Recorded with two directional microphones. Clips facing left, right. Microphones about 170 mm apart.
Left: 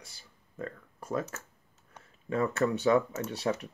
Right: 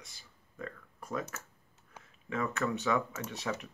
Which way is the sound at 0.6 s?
35° left (ahead or behind).